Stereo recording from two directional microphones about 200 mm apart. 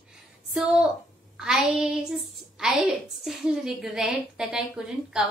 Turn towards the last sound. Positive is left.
turn(degrees=-5)  # may be behind; listen again after turning